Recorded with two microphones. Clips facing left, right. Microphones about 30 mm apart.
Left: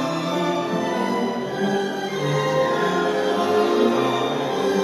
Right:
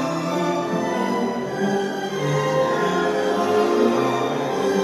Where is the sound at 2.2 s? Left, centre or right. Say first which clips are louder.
Even; centre.